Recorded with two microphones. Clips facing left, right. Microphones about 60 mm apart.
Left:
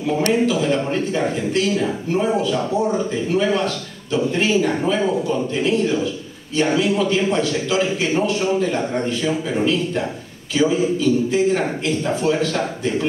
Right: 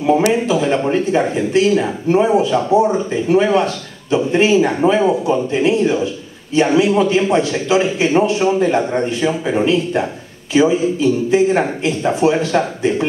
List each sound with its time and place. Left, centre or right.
0.2 s speech: centre